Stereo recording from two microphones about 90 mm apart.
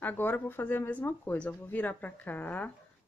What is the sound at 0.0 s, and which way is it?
Speech, 20° left (ahead or behind).